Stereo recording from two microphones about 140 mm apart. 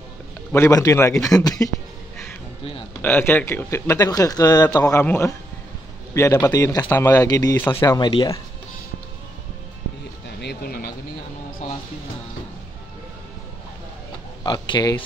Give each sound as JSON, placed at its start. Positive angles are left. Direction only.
{"t": 0.5, "sound": "speech", "side_deg": 20}
{"t": 3.0, "sound": "a man's voice", "side_deg": 15}
{"t": 10.6, "sound": "speech", "side_deg": 90}
{"t": 14.4, "sound": "speech", "side_deg": 30}